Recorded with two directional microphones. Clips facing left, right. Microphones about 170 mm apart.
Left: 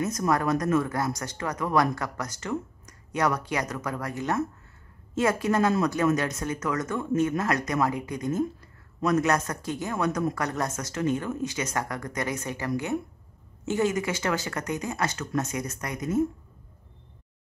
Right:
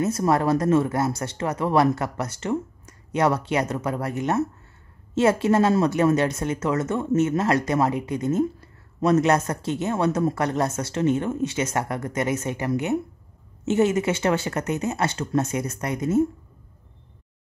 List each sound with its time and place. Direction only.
0.0 s speech: 30° right (ahead or behind)